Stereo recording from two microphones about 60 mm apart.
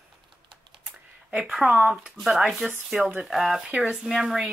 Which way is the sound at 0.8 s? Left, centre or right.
Centre.